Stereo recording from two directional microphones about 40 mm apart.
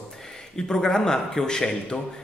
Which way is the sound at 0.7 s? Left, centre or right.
Centre.